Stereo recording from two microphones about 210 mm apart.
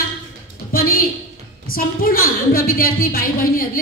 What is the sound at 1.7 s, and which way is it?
A woman's voice, 45° left (ahead or behind).